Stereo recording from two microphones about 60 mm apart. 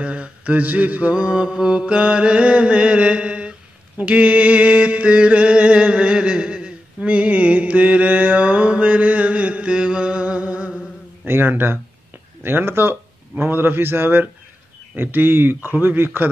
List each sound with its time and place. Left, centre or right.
0.0 s mantra: centre
11.2 s speech: right